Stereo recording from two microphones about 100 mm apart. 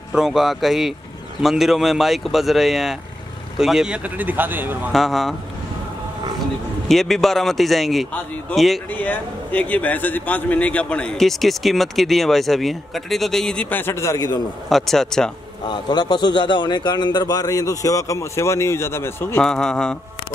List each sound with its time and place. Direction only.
0.1 s speech: 5° right (ahead or behind); by 4.7 s 20° right (ahead or behind)
4.9 s speech: centre (ahead or behind)
6.9 s speech: centre (ahead or behind)
8.9 s a man's voice: 15° left (ahead or behind); by 14.4 s 40° left (ahead or behind)
14.7 s speech: centre (ahead or behind)
15.7 s a man's voice: 45° left (ahead or behind); by 19.4 s 25° left (ahead or behind)
19.4 s a man's voice: 5° left (ahead or behind)